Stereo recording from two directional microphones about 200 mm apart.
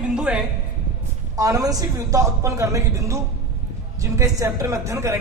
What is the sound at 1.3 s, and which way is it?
A man's voice, 15° right (ahead or behind).